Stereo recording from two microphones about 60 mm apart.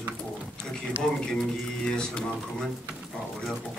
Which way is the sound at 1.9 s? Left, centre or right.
Centre.